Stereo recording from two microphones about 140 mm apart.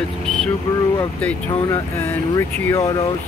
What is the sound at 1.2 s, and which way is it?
Speech, 20° left (ahead or behind).